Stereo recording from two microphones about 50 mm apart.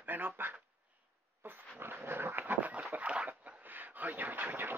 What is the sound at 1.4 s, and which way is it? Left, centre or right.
Dog, right.